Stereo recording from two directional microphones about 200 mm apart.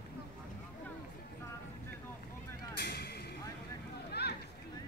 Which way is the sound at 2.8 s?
55° left (ahead or behind).